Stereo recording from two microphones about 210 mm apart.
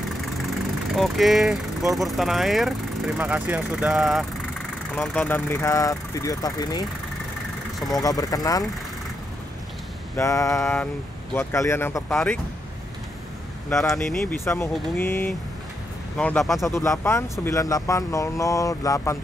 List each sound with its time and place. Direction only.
0.9 s speech: centre (ahead or behind); by 6.9 s 20° left (ahead or behind)
8.0 s speech: 15° left (ahead or behind)
10.1 s speech: 15° left (ahead or behind)
13.7 s speech: centre (ahead or behind)
16.6 s speech: 15° left (ahead or behind)